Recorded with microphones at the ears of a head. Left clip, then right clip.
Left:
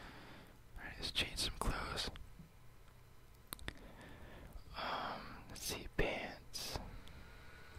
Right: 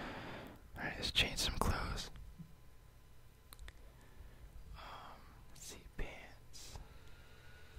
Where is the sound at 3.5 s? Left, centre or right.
Left.